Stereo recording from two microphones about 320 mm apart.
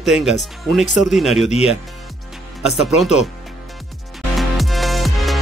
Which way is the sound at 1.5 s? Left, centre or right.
Centre.